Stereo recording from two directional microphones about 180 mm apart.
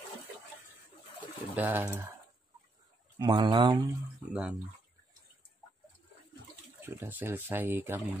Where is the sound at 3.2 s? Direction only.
25° right (ahead or behind).